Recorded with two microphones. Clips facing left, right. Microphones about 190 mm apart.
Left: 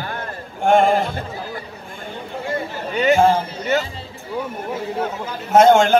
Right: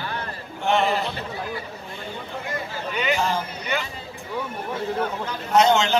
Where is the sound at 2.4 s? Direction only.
30° left (ahead or behind).